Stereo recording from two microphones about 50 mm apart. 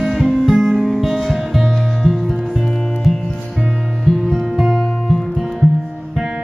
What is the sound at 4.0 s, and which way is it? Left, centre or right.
Music, centre.